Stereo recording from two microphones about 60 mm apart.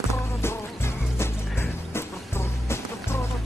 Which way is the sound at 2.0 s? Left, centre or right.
Left.